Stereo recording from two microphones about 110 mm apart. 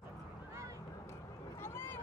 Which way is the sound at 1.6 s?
20° left (ahead or behind).